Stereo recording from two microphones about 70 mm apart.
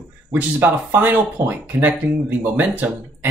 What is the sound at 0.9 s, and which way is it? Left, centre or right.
Speech, right.